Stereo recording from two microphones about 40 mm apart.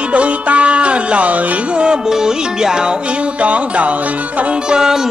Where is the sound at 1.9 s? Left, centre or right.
Centre.